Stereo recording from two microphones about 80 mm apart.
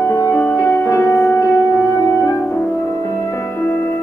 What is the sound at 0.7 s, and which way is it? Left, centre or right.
Music, left.